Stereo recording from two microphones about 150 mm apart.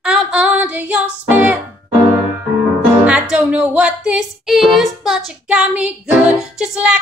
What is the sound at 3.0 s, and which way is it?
Music, 5° right (ahead or behind).